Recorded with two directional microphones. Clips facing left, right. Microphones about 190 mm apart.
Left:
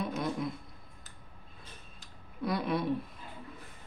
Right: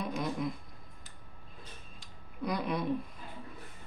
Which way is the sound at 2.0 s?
5° left (ahead or behind).